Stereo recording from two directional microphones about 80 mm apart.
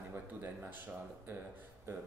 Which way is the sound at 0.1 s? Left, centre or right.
Right.